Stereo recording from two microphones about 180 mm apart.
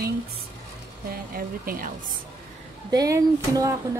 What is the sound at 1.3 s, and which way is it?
Speech, 55° right (ahead or behind).